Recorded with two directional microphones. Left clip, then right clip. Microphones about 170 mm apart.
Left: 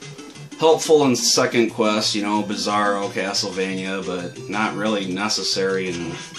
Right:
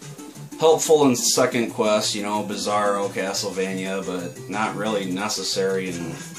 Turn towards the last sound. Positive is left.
turn(degrees=20)  # may be behind; listen again after turning